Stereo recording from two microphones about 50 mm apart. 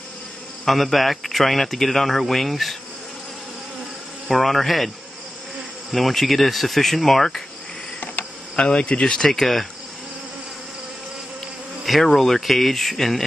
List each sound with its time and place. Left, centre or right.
0.7 s speech: centre
4.3 s speech: centre
8.2 s cricket: left
8.5 s speech: centre
9.2 s speech: centre
11.8 s speech: centre